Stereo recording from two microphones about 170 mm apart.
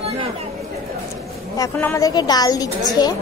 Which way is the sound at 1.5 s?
20° left (ahead or behind).